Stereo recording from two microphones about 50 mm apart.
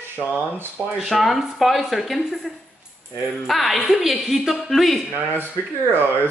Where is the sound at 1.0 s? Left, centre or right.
Centre.